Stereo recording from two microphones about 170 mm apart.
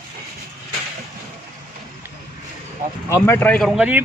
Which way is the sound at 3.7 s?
5° right (ahead or behind).